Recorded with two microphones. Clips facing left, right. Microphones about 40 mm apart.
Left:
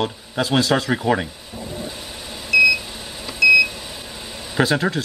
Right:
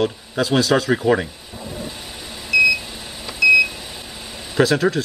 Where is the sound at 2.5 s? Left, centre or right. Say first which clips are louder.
Left 1 dB; centre.